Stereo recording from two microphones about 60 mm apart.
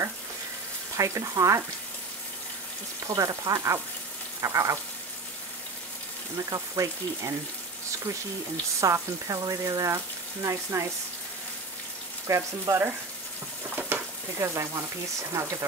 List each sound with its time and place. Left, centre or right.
0.9 s speech: right
3.2 s speech: right
6.3 s speech: right
8.8 s speech: right
12.3 s speech: right
13.7 s stir: right
14.4 s speech: right